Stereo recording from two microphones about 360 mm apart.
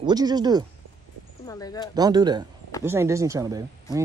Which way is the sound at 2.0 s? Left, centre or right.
Centre.